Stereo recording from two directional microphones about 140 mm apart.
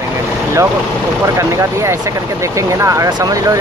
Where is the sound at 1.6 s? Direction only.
20° right (ahead or behind).